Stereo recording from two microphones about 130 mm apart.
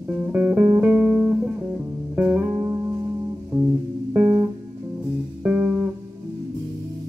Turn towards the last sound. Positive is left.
turn(degrees=-10)  # may be behind; listen again after turning